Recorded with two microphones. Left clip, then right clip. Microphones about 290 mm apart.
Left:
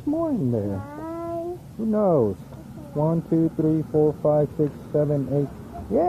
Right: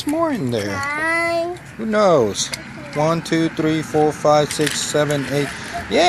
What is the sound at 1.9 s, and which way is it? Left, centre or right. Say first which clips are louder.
Speech: right 6 dB; right.